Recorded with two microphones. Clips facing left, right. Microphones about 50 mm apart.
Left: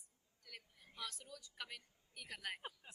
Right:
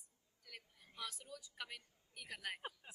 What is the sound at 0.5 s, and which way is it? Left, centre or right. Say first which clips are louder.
A woman's voice: even; centre.